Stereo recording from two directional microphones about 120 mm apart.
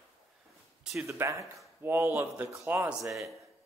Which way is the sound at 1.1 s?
25° right (ahead or behind).